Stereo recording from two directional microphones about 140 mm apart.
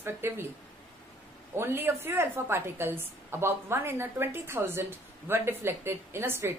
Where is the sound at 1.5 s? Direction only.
15° right (ahead or behind).